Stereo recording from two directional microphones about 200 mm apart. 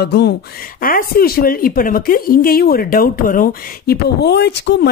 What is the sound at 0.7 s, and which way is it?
A woman's voice, 45° left (ahead or behind).